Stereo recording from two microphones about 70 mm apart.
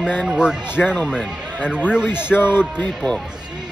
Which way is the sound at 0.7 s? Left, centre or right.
Left.